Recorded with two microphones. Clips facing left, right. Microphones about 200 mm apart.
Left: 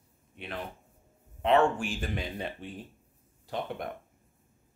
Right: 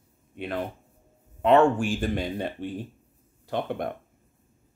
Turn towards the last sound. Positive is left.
turn(degrees=-60)  # may be behind; listen again after turning